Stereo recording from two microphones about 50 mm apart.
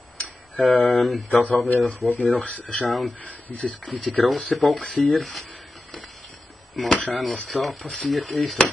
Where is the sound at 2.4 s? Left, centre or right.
Left.